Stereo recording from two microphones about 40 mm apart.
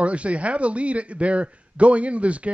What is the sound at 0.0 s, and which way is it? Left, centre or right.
A man's voice, right.